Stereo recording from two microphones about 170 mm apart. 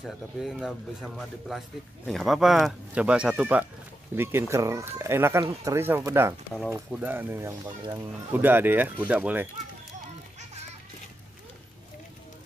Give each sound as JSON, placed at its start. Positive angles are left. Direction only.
{"t": 0.0, "sound": "speech", "side_deg": 0}